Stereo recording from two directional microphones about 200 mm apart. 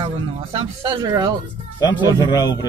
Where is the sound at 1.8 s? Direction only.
20° left (ahead or behind).